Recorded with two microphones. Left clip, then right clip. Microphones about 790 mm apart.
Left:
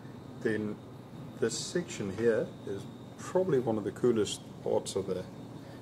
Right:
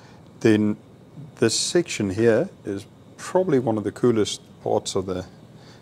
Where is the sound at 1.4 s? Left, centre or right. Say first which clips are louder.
Right 12 dB; right.